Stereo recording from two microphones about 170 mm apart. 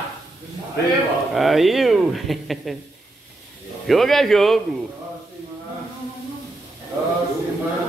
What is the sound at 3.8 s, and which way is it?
Speech, centre (ahead or behind).